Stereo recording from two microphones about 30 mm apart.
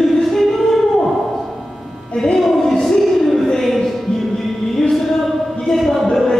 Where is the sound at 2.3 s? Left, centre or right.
Centre.